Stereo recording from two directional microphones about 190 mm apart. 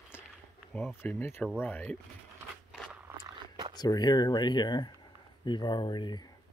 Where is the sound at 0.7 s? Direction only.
5° left (ahead or behind).